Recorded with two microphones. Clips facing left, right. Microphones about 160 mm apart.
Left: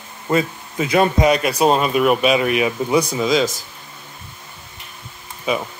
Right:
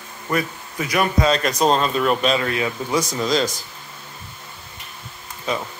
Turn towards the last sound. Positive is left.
turn(degrees=10)  # may be behind; listen again after turning